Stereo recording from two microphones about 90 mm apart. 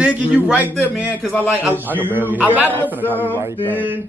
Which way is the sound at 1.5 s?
20° right (ahead or behind).